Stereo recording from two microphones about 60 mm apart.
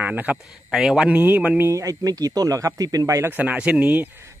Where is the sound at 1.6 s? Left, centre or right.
Right.